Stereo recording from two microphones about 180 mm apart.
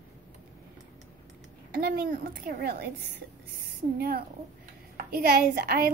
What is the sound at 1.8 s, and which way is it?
Speech, 55° right (ahead or behind).